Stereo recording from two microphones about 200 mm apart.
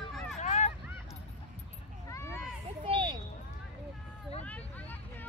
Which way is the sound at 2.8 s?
25° right (ahead or behind).